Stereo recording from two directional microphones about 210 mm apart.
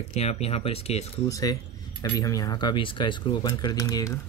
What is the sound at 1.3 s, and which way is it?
Speech, 15° left (ahead or behind).